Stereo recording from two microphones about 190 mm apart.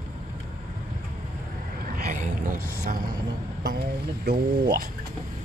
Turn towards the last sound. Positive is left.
turn(degrees=-55)  # may be behind; listen again after turning